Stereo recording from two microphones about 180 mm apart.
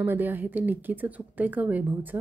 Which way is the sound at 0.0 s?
10° right (ahead or behind).